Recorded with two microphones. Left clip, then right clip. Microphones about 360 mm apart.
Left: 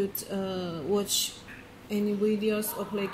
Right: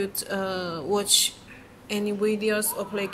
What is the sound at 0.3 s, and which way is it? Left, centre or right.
Speech, right.